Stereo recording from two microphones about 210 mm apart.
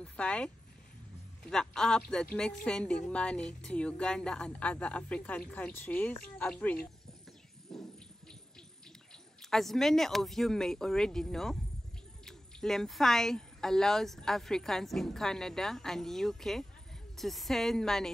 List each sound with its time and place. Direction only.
0.0 s speech: 5° left (ahead or behind)
7.7 s water: centre (ahead or behind)
9.4 s speech: centre (ahead or behind)